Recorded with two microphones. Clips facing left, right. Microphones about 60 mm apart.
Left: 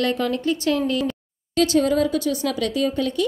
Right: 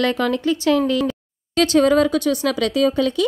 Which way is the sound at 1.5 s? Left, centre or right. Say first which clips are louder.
Right 4 dB; right.